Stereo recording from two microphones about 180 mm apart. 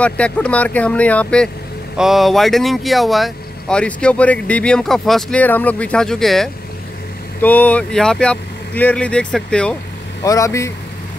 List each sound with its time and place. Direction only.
0.0 s speech: 5° left (ahead or behind)
10.2 s speech: 20° left (ahead or behind)